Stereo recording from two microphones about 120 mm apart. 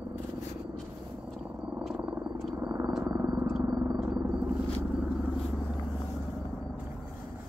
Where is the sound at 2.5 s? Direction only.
25° right (ahead or behind).